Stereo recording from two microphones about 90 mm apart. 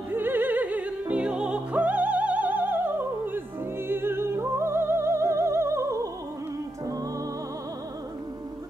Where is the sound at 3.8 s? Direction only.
25° right (ahead or behind).